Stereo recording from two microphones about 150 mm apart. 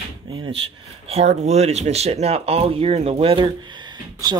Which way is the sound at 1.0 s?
40° right (ahead or behind).